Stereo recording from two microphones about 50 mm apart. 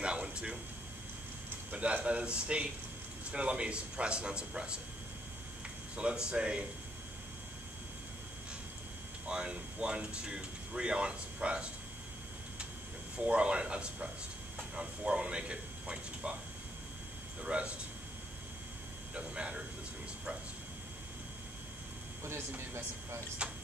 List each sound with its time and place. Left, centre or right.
0.0 s a sound: centre
1.7 s a sound: right
2.0 s speech: right
5.9 s speech: centre
9.2 s speech: centre
13.2 s speech: right
17.4 s speech: right
19.1 s speech: right
23.4 s speech: centre